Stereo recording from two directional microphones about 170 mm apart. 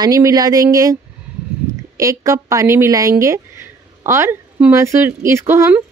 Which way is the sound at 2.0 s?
20° right (ahead or behind).